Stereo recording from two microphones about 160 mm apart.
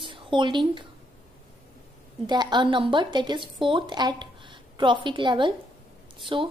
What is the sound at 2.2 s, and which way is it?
A woman's voice, 25° right (ahead or behind).